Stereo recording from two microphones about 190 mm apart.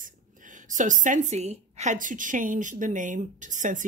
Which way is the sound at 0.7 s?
40° right (ahead or behind).